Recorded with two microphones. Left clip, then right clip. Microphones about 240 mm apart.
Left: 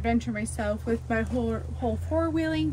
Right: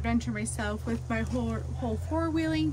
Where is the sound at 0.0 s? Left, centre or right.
Centre.